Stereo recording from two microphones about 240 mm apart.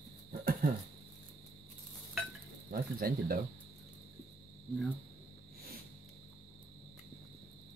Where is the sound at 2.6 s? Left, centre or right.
Right.